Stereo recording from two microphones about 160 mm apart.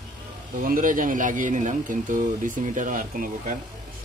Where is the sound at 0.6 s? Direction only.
60° right (ahead or behind).